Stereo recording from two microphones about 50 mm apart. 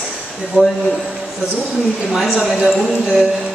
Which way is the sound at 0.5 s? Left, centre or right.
Right.